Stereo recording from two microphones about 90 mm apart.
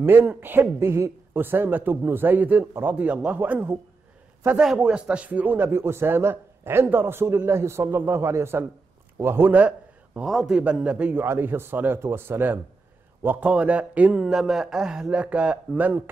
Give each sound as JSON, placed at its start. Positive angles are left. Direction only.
{"t": 0.0, "sound": "a man's voice", "side_deg": -20}
{"t": 4.7, "sound": "a man's voice", "side_deg": -10}
{"t": 10.2, "sound": "a man's voice", "side_deg": -5}